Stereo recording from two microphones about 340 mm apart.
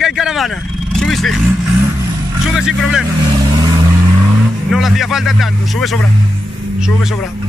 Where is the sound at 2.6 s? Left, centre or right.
Centre.